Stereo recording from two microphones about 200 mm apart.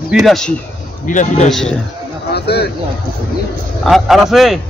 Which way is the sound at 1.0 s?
40° left (ahead or behind).